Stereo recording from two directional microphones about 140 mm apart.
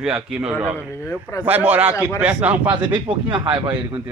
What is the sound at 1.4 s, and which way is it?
Speech, 15° right (ahead or behind).